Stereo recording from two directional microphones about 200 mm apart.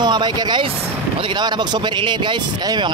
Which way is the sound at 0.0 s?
20° right (ahead or behind).